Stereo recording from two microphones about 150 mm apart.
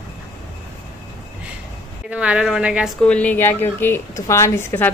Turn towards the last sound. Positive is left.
turn(degrees=15)  # may be behind; listen again after turning